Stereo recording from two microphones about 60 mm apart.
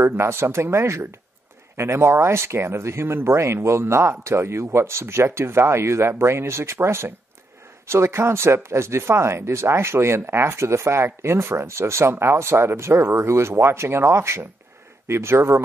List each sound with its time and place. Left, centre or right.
0.0 s speech: right